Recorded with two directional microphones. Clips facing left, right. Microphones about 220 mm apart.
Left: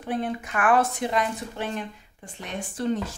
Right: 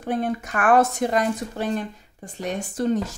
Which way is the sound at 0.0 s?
45° right (ahead or behind).